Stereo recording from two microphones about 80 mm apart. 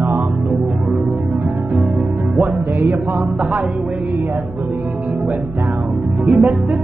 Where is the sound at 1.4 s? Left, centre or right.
Right.